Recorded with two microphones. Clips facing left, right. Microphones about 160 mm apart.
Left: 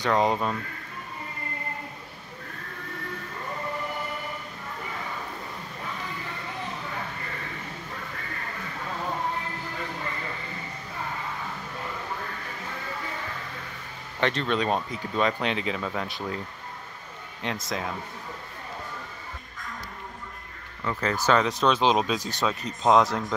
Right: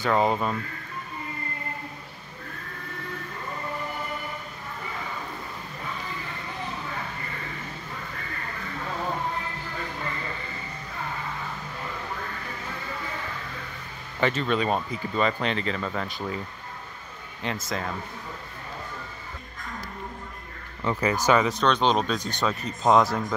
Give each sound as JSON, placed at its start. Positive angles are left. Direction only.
{"t": 0.0, "sound": "speech", "side_deg": -5}
{"t": 14.2, "sound": "speech", "side_deg": -5}
{"t": 17.4, "sound": "speech", "side_deg": 0}
{"t": 20.8, "sound": "speech", "side_deg": -15}